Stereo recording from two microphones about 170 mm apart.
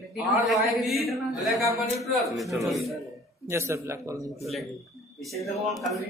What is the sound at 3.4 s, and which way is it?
Speech, 15° right (ahead or behind).